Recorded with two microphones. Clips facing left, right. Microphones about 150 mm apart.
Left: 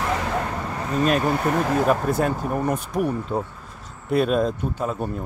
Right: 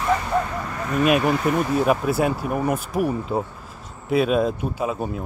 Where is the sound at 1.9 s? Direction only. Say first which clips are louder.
Right 1 dB; 10° right (ahead or behind).